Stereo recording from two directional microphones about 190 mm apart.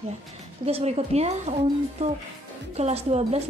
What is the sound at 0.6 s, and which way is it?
Speech, 30° right (ahead or behind).